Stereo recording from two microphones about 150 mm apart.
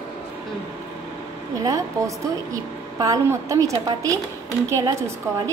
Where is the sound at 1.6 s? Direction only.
20° right (ahead or behind).